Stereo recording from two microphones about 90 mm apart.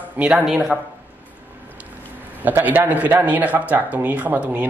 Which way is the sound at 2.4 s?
20° right (ahead or behind).